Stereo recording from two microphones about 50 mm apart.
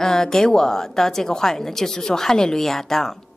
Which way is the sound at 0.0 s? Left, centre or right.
Centre.